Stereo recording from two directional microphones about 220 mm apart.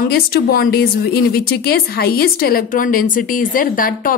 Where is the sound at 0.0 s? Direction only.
45° left (ahead or behind).